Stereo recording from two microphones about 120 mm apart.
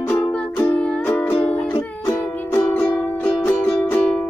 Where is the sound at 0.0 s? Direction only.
20° left (ahead or behind).